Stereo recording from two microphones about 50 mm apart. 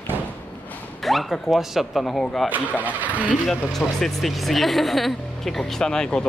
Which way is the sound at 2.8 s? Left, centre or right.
Right.